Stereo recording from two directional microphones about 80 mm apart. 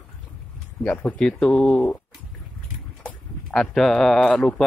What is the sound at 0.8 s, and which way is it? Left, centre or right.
Speech, centre.